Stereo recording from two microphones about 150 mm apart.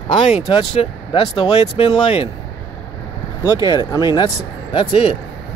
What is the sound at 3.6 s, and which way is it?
Speech, 25° left (ahead or behind).